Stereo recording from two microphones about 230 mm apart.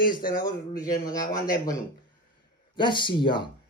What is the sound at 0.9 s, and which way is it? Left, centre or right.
Speech, centre.